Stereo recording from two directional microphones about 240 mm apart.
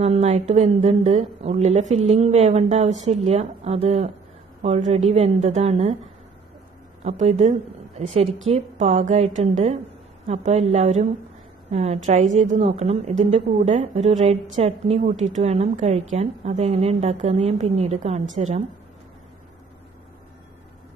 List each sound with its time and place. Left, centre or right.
0.0 s a woman's voice: right
7.0 s a woman's voice: right